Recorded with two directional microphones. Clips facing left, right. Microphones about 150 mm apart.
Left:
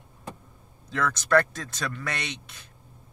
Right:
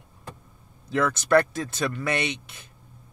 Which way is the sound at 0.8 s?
10° right (ahead or behind).